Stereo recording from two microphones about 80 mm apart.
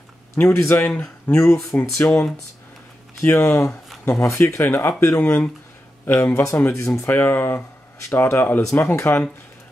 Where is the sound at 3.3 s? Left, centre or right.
Left.